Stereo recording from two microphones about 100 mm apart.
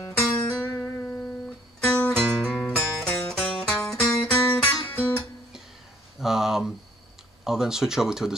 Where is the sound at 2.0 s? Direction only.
10° left (ahead or behind).